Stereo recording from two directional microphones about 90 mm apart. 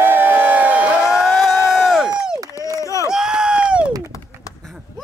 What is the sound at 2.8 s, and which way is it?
Run, 35° left (ahead or behind).